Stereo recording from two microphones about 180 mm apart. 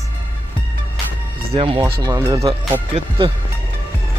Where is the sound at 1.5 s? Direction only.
30° right (ahead or behind).